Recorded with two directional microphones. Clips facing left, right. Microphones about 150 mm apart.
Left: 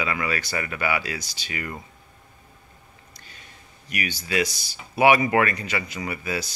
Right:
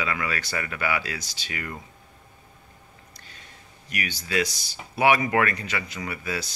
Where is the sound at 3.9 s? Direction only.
10° left (ahead or behind).